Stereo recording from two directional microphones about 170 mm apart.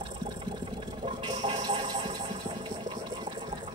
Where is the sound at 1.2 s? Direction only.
25° right (ahead or behind).